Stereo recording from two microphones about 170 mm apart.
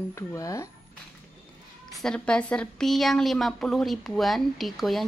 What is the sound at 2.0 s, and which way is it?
A woman's voice, 5° left (ahead or behind).